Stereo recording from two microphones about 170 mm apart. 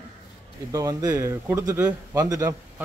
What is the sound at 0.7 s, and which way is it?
A man's voice, 20° right (ahead or behind).